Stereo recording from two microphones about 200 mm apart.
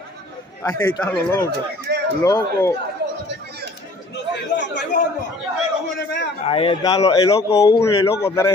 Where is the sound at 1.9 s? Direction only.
55° right (ahead or behind).